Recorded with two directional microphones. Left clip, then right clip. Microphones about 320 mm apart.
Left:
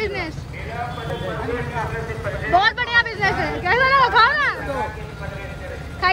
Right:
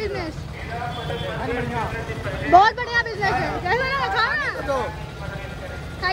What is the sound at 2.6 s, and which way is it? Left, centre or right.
Speech, centre.